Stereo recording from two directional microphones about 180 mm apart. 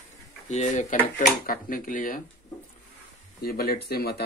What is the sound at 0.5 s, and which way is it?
Speech, 40° left (ahead or behind).